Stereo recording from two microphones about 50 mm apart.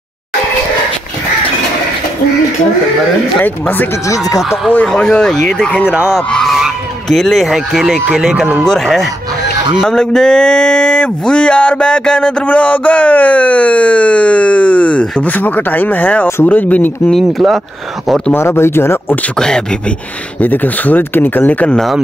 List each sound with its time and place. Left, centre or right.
3.4 s speech: left
4.9 s a sound: left
5.4 s speech: centre
6.4 s goose: centre
7.2 s speech: centre
7.4 s speech: centre
8.6 s speech: centre
9.8 s a sound: centre; by 16.3 s left
16.4 s speech: left
17.1 s speech: centre
18.3 s speech: left
19.3 s speech: centre
20.3 s speech: left